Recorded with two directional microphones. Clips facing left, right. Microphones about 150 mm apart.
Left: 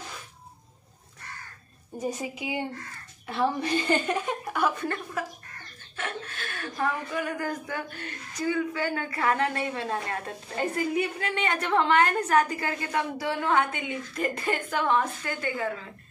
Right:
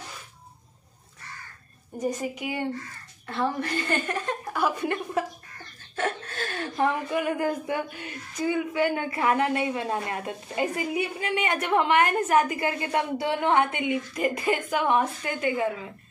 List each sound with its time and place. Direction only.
2.0 s a woman's voice: 10° left (ahead or behind)
4.5 s a woman's voice: 5° right (ahead or behind)
5.2 s speech: 30° right (ahead or behind)
5.9 s a sound: 40° right (ahead or behind)
6.6 s a woman's voice: 20° right (ahead or behind)